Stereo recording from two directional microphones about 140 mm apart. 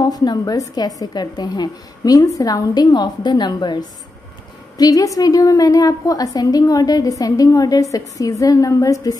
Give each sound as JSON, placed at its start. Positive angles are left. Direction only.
{"t": 0.0, "sound": "a woman's voice", "side_deg": 30}